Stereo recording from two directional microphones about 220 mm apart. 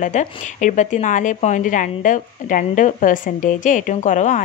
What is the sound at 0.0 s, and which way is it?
Speech, 35° left (ahead or behind).